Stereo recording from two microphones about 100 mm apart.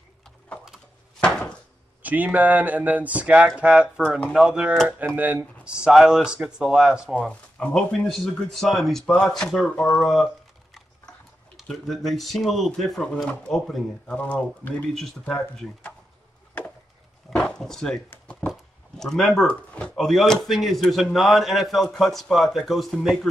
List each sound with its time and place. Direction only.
1.2 s a sound: 10° left (ahead or behind)
2.0 s speech: 15° right (ahead or behind)
7.2 s speech: 15° left (ahead or behind)
11.6 s speech: 5° left (ahead or behind)
14.1 s speech: 15° left (ahead or behind)
15.0 s speech: centre (ahead or behind)
15.3 s speech: 15° left (ahead or behind)
17.3 s a sound: 5° left (ahead or behind)
18.5 s chop: 5° left (ahead or behind)
20.1 s speech: centre (ahead or behind)